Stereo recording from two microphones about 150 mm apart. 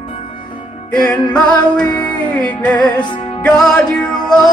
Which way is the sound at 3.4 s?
5° left (ahead or behind).